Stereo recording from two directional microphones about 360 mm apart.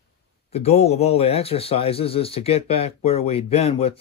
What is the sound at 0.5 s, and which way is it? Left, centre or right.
Speech, centre.